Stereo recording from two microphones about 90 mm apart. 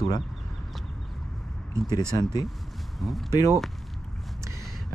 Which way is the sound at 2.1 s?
45° left (ahead or behind).